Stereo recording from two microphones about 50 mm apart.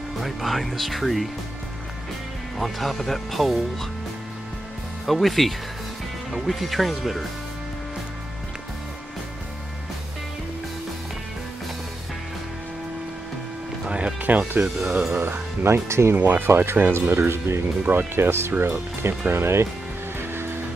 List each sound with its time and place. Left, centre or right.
0.2 s speech: centre
2.6 s speech: centre
5.0 s speech: centre
13.8 s speech: right
14.5 s speech: right
15.2 s speech: right
17.1 s speech: right
20.2 s music: right